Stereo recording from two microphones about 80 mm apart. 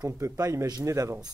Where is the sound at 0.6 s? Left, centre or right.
Right.